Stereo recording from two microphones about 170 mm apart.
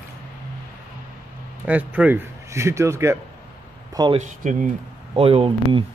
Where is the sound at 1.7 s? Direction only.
10° right (ahead or behind); by 4.2 s 25° right (ahead or behind).